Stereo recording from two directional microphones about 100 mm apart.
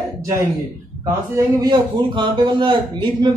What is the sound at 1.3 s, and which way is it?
Speech, 45° right (ahead or behind).